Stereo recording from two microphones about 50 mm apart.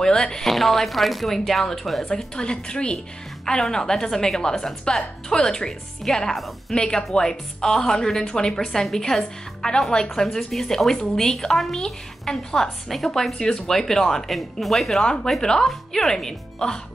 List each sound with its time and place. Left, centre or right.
0.0 s speech: centre
2.0 s speech: centre
6.7 s speech: centre
13.4 s speech: centre
13.7 s speech: centre